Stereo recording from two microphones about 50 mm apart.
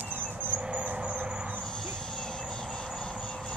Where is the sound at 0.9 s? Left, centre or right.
Right.